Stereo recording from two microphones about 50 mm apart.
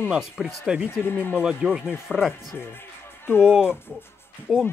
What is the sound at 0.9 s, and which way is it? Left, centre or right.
Speech, left.